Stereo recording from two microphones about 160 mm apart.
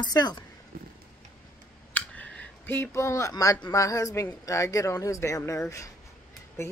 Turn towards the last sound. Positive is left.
turn(degrees=15)  # may be behind; listen again after turning